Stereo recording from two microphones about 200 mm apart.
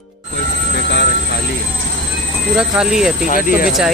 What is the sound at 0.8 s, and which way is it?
Train, 55° left (ahead or behind).